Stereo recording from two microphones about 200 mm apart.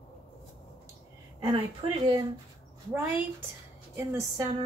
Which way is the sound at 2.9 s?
10° right (ahead or behind).